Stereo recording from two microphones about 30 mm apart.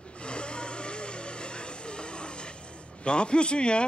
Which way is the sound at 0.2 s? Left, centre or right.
Left.